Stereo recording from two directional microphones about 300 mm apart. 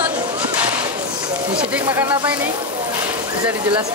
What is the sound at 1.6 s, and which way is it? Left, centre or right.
Speech, centre.